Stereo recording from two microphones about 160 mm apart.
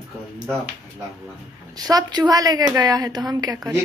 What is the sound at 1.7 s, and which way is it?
A woman's voice, 25° right (ahead or behind).